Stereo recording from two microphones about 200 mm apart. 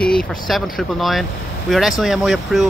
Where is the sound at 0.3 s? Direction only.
Centre (ahead or behind).